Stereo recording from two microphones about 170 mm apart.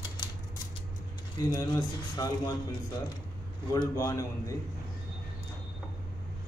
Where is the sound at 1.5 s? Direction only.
20° left (ahead or behind).